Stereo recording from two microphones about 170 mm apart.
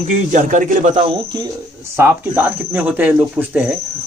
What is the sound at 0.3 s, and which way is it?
Speech, 50° right (ahead or behind).